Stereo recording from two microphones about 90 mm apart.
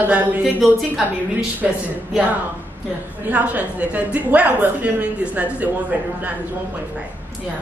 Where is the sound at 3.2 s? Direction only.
15° right (ahead or behind).